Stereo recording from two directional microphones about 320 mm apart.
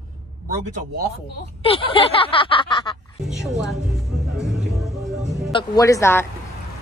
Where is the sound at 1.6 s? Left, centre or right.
Centre.